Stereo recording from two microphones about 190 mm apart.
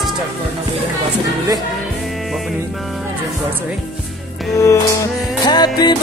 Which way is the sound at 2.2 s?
Centre (ahead or behind).